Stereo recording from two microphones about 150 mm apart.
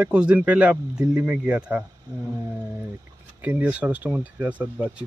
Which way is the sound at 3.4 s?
10° right (ahead or behind).